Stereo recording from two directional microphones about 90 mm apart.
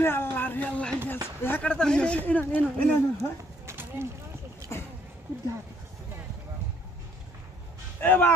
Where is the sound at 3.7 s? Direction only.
30° right (ahead or behind).